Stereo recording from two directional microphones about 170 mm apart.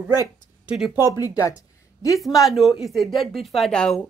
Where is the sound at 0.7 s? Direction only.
5° right (ahead or behind).